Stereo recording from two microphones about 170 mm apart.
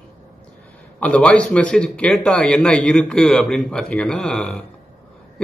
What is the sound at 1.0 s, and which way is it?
A man's voice, 10° left (ahead or behind).